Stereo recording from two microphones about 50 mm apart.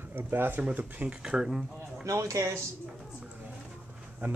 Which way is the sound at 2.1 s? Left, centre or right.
Right.